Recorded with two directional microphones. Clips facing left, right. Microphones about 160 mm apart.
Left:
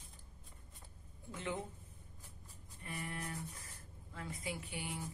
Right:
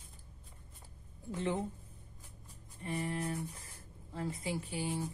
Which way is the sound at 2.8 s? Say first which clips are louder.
Right 8 dB; 30° right (ahead or behind).